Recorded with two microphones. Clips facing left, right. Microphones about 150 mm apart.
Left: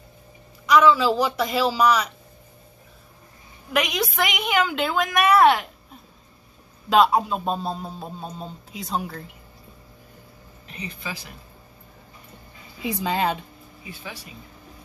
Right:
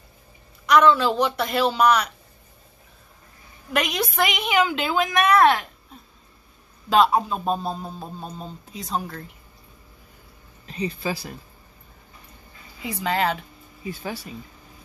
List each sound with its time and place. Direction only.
0.7 s a man's voice: centre (ahead or behind)
3.7 s a man's voice: centre (ahead or behind)
6.9 s a man's voice: centre (ahead or behind)
10.7 s speech: 35° right (ahead or behind)
12.8 s speech: 15° left (ahead or behind)
13.8 s speech: 40° right (ahead or behind)